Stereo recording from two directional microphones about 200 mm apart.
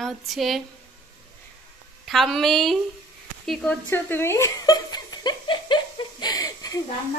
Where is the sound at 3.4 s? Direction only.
Centre (ahead or behind).